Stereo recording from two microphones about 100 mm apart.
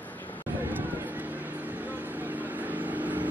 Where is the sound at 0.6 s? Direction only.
20° right (ahead or behind).